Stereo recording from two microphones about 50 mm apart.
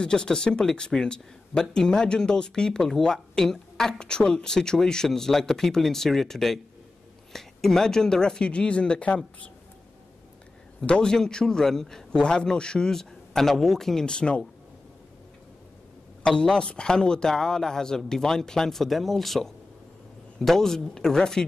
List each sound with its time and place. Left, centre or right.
0.0 s speech: centre
10.9 s speech: centre
16.3 s speech: centre